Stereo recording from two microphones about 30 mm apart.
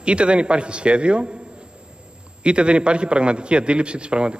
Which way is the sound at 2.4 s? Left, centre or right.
Right.